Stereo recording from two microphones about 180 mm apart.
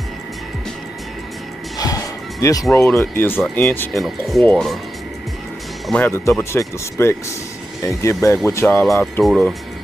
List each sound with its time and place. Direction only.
1.8 s music: 20° left (ahead or behind)
2.7 s speech: 15° left (ahead or behind)
3.9 s speech: centre (ahead or behind)
5.9 s speech: 10° left (ahead or behind)
9.2 s speech: centre (ahead or behind)